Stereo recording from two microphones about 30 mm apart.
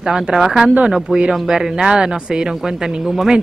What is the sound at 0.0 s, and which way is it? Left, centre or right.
Speech, right.